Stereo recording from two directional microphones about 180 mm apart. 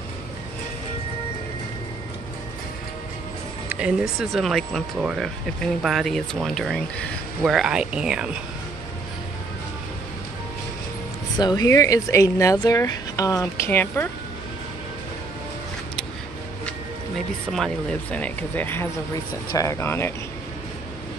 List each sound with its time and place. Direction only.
3.6 s speech: 5° right (ahead or behind)
11.3 s speech: 20° left (ahead or behind)
17.5 s speech: centre (ahead or behind)